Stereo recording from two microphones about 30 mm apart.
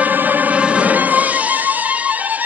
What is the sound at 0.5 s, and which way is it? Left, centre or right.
Music, right.